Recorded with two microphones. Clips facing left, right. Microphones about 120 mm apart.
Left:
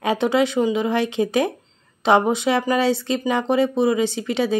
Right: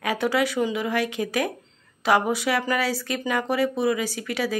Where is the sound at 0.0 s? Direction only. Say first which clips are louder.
Left 4 dB; 25° left (ahead or behind).